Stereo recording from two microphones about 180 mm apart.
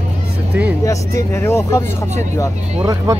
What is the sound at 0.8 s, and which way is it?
Speech, 15° left (ahead or behind).